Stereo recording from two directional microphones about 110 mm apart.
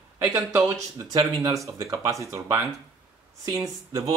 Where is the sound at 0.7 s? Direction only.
30° right (ahead or behind).